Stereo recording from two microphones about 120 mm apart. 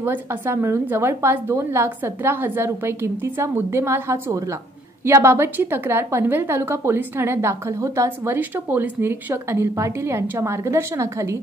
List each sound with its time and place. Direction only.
0.0 s a woman's voice: 20° right (ahead or behind)